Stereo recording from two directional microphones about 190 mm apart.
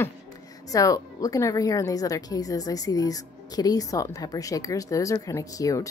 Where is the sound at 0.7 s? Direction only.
20° left (ahead or behind).